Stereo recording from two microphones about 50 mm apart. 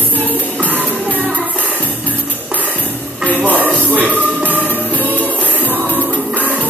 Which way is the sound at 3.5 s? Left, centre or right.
Right.